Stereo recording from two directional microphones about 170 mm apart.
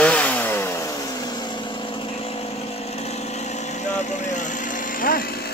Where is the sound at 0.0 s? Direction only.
10° left (ahead or behind).